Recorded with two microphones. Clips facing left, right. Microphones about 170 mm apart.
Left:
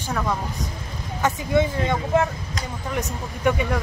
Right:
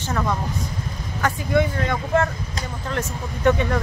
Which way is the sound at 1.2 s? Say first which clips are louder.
Even; 20° left (ahead or behind).